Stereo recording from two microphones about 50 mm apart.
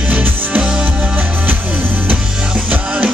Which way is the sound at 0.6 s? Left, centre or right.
Right.